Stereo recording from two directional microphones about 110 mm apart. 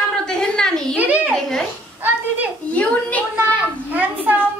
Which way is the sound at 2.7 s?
15° left (ahead or behind).